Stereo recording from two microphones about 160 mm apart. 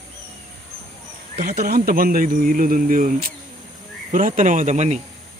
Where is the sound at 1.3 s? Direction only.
45° right (ahead or behind).